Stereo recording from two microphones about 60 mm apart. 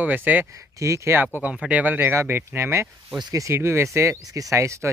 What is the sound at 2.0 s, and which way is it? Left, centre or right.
Speech, right.